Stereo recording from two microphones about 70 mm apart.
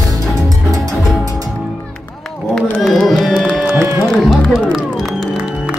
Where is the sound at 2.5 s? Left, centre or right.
Centre.